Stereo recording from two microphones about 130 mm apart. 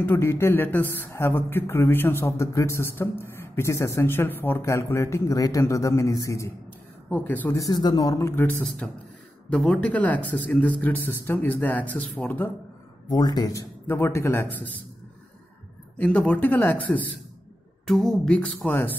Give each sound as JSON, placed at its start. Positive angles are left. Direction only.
{"t": 0.0, "sound": "speech", "side_deg": 20}
{"t": 7.1, "sound": "speech", "side_deg": 15}
{"t": 7.5, "sound": "speech", "side_deg": 30}
{"t": 13.1, "sound": "speech", "side_deg": 30}
{"t": 16.0, "sound": "speech", "side_deg": 10}